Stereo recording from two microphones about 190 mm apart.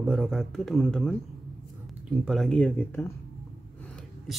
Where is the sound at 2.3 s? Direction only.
Centre (ahead or behind).